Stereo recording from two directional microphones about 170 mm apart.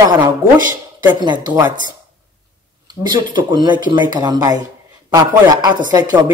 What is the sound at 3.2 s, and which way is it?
Speech, 25° right (ahead or behind).